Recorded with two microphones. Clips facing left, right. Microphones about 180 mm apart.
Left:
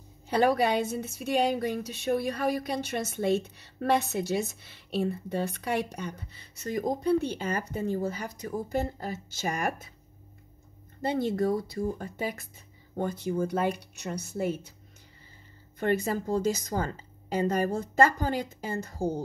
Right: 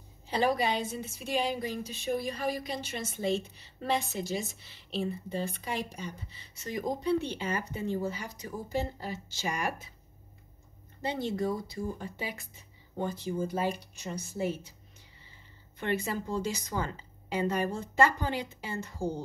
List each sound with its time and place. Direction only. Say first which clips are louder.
0.4 s a woman's voice: left 4 dB; 60° left (ahead or behind)
11.0 s a woman's voice: left 5 dB; 50° left (ahead or behind)
13.4 s speech: left 3 dB; 65° left (ahead or behind)
15.8 s a woman's voice: left 5 dB; 45° left (ahead or behind)